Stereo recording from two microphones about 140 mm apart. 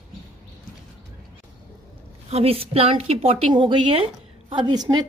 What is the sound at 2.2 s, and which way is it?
A woman's voice, 45° right (ahead or behind).